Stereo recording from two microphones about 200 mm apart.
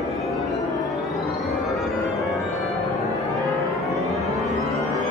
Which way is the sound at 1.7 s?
Centre (ahead or behind).